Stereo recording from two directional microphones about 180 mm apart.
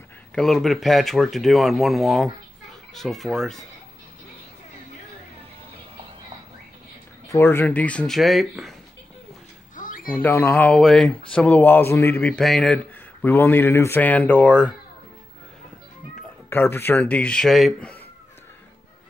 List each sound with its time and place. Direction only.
0.3 s speech: centre (ahead or behind)
7.2 s speech: 15° left (ahead or behind)
9.8 s a sound: 50° left (ahead or behind)
10.2 s speech: 10° left (ahead or behind)
16.4 s speech: 15° left (ahead or behind)